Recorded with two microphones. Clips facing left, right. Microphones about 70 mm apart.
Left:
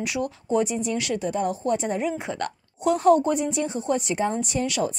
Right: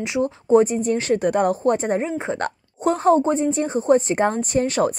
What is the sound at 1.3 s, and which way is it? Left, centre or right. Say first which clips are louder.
A woman's voice: right 6 dB; right.